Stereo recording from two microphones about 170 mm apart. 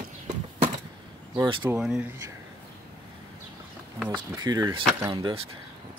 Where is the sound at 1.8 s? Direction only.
5° right (ahead or behind).